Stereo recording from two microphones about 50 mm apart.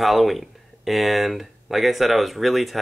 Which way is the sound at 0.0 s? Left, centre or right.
Centre.